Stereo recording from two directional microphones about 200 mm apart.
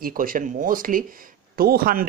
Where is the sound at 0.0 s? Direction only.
45° right (ahead or behind).